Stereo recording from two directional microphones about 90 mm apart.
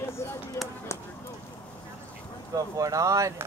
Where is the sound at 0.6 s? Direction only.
30° left (ahead or behind).